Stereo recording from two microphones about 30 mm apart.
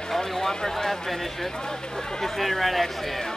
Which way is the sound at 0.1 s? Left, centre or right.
Centre.